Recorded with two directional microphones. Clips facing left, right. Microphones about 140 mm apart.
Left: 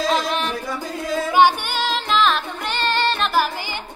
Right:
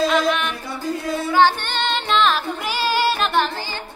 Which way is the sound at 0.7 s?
90° left.